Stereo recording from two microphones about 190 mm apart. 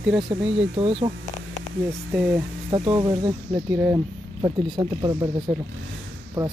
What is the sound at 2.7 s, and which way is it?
Speech, 25° right (ahead or behind).